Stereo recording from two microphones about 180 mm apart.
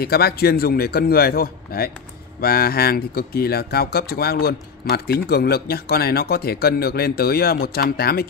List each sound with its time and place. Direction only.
0.0 s speech: 60° left (ahead or behind)